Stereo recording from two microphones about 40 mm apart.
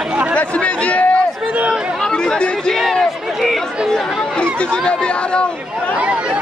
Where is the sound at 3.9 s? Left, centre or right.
Left.